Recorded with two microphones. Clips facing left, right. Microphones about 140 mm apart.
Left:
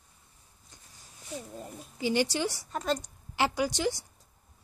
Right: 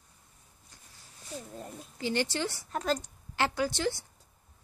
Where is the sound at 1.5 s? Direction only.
10° left (ahead or behind).